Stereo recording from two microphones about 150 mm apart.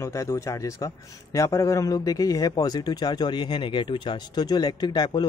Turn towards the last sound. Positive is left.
turn(degrees=25)  # may be behind; listen again after turning